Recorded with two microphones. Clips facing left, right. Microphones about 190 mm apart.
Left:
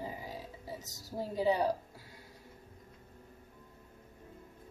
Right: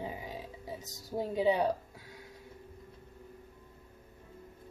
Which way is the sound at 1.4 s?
Centre (ahead or behind).